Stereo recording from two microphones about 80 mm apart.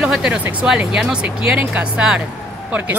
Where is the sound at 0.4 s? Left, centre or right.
Centre.